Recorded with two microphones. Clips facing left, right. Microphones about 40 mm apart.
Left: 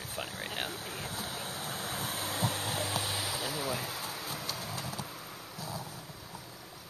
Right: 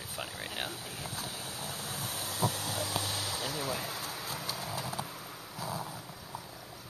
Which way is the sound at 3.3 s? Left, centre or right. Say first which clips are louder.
Left 1 dB; centre.